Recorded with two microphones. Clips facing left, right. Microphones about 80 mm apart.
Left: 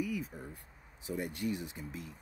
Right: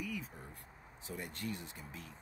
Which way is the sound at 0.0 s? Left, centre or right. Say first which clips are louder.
Left 6 dB; centre.